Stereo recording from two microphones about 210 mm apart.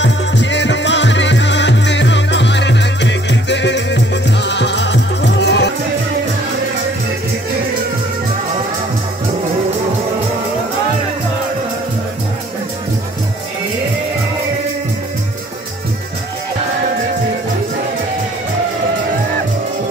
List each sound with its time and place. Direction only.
0.0 s music: 60° left (ahead or behind)